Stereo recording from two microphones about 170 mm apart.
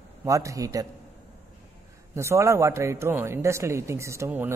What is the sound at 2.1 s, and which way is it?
A man's voice, 15° right (ahead or behind).